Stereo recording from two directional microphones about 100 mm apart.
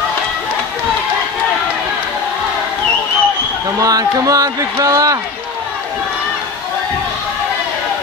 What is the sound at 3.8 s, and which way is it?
Speech, 35° right (ahead or behind).